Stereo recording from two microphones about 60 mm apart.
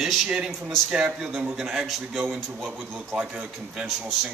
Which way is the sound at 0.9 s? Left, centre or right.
Centre.